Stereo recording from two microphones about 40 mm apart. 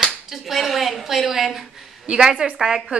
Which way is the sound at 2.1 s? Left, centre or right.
Centre.